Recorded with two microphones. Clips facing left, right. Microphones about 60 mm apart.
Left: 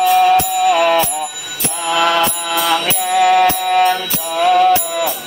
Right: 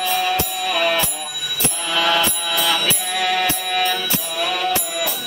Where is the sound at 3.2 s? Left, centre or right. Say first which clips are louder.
Left 10 dB; left.